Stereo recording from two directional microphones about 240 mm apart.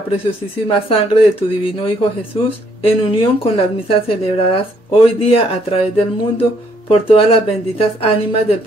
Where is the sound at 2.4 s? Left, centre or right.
Left.